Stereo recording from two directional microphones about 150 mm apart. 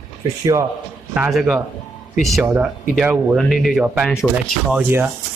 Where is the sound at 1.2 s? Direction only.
5° right (ahead or behind).